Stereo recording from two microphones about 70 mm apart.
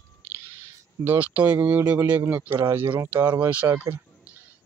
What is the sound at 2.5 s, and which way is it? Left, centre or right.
Speech, right.